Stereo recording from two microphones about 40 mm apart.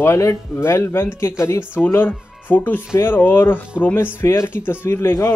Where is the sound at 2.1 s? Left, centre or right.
Left.